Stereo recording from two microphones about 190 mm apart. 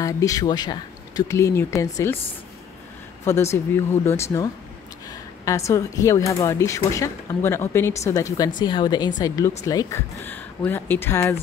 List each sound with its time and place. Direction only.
0.0 s speech: 15° left (ahead or behind)
3.3 s speech: 15° left (ahead or behind)